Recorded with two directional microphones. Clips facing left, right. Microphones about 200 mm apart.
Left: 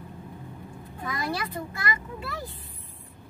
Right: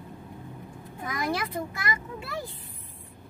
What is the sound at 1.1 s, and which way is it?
Speech, 20° right (ahead or behind).